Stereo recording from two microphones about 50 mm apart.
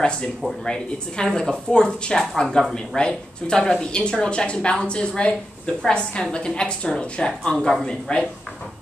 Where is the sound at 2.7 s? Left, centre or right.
Centre.